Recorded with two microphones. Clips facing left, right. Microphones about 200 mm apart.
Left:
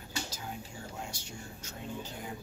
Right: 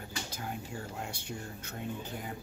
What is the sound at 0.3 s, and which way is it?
Whispering, 55° right (ahead or behind).